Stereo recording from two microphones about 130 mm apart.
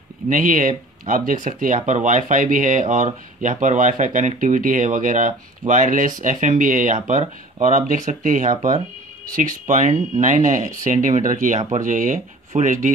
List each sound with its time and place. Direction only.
0.3 s speech: 90° right; by 12.9 s 75° right (ahead or behind)